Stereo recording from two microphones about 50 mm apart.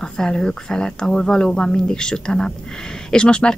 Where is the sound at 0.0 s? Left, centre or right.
Centre.